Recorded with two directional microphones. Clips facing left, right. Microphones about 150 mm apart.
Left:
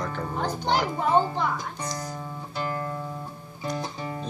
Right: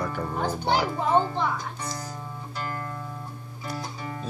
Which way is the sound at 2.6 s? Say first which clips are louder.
Left 4 dB; 25° left (ahead or behind).